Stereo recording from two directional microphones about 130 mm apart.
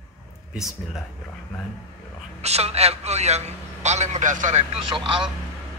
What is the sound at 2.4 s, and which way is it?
A man's voice, 55° right (ahead or behind).